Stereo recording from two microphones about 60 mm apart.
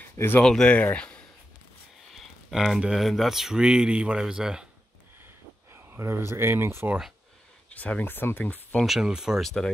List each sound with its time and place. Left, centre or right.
0.4 s speech: centre
2.1 s a sound: centre
3.0 s speech: centre
5.7 s a sound: right
5.9 s speech: right
7.7 s speech: left
8.8 s speech: centre
9.4 s speech: centre